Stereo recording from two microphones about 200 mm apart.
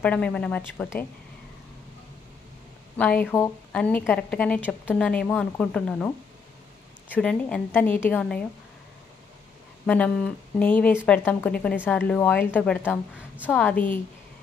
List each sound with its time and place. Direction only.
0.0 s a woman's voice: 5° left (ahead or behind)
3.0 s a woman's voice: 5° left (ahead or behind)
9.8 s a woman's voice: 5° left (ahead or behind)